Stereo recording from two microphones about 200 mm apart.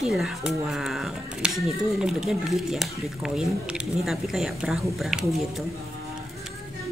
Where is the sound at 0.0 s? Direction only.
Centre (ahead or behind).